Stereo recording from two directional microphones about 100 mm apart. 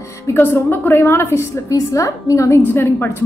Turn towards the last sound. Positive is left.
turn(degrees=20)  # may be behind; listen again after turning